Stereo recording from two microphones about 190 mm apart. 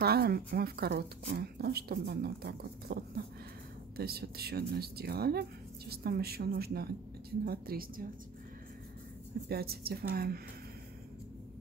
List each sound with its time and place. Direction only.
0.0 s speech: 55° right (ahead or behind)
9.5 s a woman's voice: 55° right (ahead or behind)